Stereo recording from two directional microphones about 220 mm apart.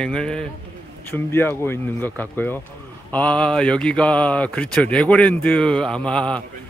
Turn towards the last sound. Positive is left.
turn(degrees=5)  # may be behind; listen again after turning